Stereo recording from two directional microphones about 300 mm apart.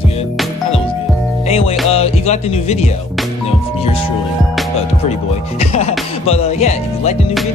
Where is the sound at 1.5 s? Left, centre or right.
Centre.